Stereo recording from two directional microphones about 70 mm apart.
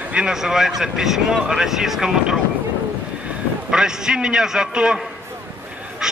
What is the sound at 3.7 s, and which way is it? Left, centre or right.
Speech, centre.